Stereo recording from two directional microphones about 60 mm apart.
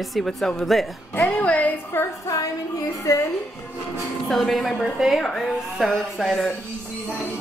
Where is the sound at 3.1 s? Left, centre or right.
Left.